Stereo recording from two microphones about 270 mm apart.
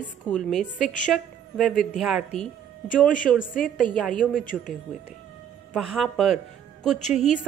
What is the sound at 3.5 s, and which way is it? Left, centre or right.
A woman's voice, left.